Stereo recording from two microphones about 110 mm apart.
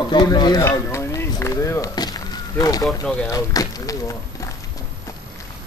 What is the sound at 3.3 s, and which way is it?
Dishes, 30° left (ahead or behind).